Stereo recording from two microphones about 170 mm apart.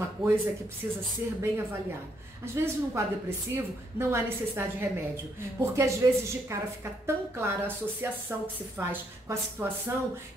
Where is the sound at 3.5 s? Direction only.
15° right (ahead or behind).